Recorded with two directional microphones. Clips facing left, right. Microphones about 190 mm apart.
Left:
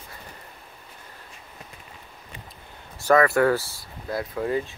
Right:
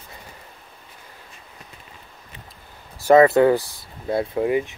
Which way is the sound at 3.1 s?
20° right (ahead or behind).